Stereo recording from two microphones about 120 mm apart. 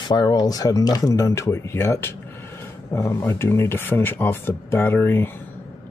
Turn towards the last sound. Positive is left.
turn(degrees=20)  # may be behind; listen again after turning